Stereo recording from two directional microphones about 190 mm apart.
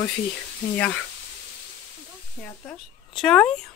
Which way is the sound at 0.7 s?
5° left (ahead or behind).